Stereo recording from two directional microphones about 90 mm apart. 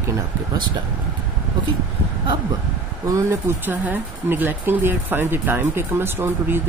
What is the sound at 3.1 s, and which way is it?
Speech, 35° right (ahead or behind).